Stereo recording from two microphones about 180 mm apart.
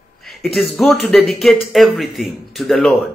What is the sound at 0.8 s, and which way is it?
A man's voice, centre (ahead or behind).